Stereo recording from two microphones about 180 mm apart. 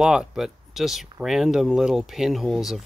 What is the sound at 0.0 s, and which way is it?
Speech, 5° right (ahead or behind).